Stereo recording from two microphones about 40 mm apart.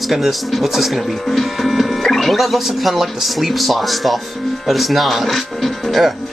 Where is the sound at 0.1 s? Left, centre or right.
Centre.